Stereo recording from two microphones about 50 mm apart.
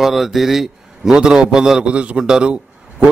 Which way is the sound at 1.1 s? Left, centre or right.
Centre.